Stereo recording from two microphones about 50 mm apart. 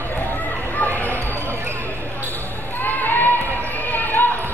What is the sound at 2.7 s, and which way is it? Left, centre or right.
Basketball bounce, left.